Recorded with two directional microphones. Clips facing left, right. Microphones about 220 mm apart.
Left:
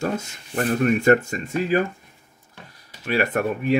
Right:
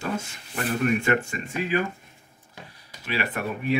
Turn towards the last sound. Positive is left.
turn(degrees=45)  # may be behind; listen again after turning